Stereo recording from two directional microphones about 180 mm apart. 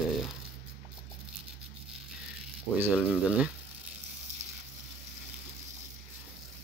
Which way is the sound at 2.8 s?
5° right (ahead or behind).